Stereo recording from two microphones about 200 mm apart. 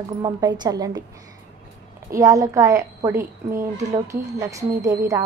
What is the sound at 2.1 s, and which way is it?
A woman's voice, 15° right (ahead or behind).